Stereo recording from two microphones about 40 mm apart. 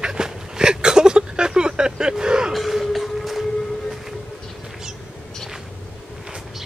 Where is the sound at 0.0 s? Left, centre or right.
Centre.